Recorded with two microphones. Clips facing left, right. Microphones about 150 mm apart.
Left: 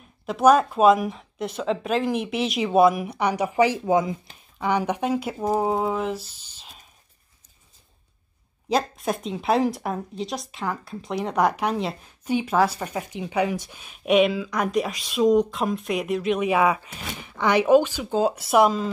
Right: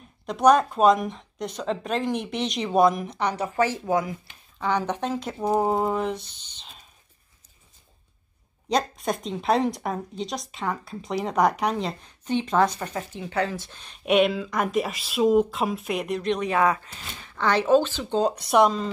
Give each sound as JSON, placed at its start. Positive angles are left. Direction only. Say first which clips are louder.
{"t": 0.3, "sound": "speech", "louder": "left 1 dB", "side_deg": 5}
{"t": 8.6, "sound": "speech", "louder": "left 1 dB", "side_deg": 0}